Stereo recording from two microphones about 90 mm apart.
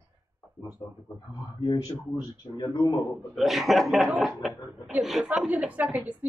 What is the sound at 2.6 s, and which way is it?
Speech, 50° left (ahead or behind).